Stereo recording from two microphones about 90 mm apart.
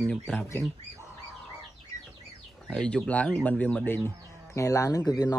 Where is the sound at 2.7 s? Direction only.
10° left (ahead or behind).